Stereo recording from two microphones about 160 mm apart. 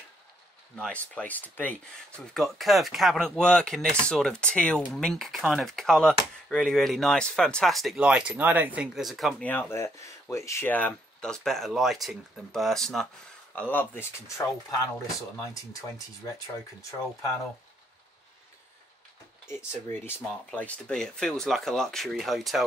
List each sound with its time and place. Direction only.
0.8 s speech: 10° left (ahead or behind)
9.5 s speech: 15° left (ahead or behind)
19.4 s speech: 15° left (ahead or behind); by 22.7 s centre (ahead or behind)